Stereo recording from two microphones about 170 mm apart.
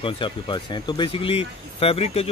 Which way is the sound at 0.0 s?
30° left (ahead or behind).